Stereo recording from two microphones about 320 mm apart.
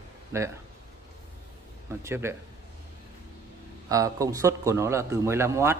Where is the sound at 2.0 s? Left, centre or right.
Centre.